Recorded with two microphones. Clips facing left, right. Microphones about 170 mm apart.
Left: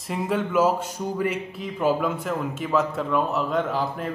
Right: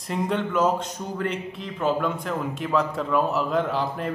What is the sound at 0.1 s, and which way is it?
Speech, 5° left (ahead or behind).